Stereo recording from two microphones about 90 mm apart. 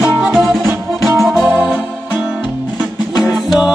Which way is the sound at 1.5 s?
15° right (ahead or behind).